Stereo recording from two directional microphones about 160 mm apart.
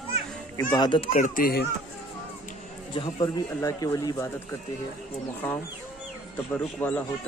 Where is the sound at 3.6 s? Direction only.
20° left (ahead or behind).